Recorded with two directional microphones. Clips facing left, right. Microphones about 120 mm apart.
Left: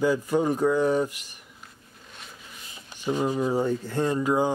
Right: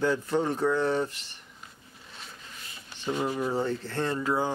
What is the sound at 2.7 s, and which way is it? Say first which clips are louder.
Speech: left 4 dB; 15° left (ahead or behind).